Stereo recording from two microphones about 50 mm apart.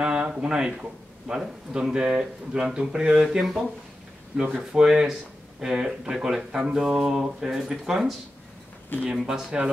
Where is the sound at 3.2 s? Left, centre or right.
Centre.